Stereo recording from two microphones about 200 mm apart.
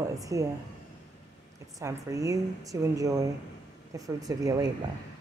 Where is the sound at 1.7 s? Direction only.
15° right (ahead or behind).